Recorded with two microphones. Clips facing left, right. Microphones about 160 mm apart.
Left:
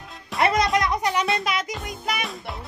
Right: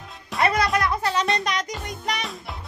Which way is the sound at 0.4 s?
20° left (ahead or behind).